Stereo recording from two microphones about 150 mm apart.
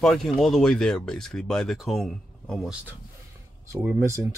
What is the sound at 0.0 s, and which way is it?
Speech, centre (ahead or behind).